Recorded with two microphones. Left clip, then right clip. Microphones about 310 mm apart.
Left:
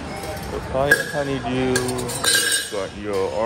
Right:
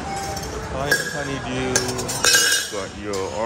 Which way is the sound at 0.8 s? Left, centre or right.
Centre.